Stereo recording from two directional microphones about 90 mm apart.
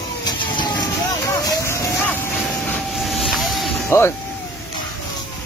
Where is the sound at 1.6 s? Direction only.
30° left (ahead or behind).